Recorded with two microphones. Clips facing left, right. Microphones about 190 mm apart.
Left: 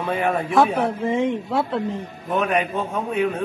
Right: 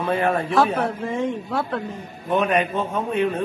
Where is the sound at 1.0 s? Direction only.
20° left (ahead or behind).